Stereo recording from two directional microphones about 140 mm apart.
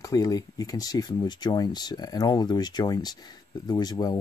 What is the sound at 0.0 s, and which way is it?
Speech, 25° left (ahead or behind).